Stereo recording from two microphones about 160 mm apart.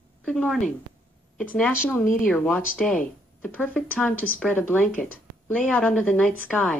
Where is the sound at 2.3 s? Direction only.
10° left (ahead or behind).